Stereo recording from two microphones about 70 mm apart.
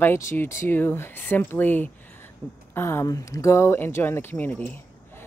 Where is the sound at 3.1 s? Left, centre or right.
Left.